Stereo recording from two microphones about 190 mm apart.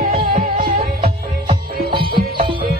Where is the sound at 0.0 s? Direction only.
50° right (ahead or behind).